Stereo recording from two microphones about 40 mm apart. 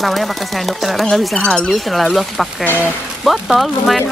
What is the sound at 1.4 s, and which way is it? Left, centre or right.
Speech, left.